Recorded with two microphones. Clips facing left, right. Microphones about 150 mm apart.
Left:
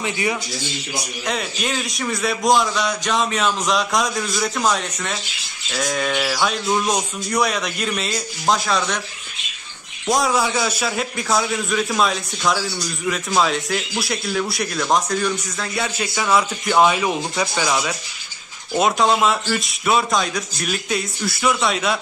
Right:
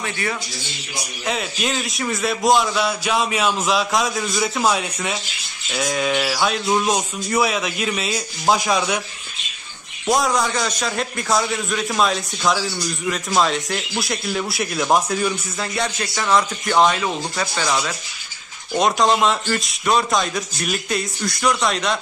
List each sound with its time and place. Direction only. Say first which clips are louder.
0.0 s speech: left 3 dB; 20° left (ahead or behind)
1.2 s a man's voice: right 2 dB; centre (ahead or behind)
10.0 s a man's voice: even; centre (ahead or behind)